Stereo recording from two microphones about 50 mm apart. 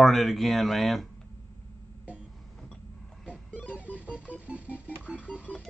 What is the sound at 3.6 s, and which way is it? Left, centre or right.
Music, right.